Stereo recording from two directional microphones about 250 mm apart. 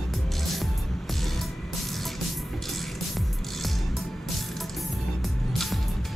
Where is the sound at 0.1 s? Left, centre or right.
Centre.